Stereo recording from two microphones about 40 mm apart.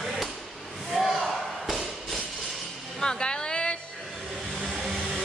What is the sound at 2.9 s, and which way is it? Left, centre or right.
Music, centre.